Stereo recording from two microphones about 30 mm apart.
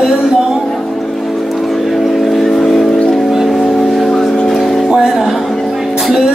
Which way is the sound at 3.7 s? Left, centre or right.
Centre.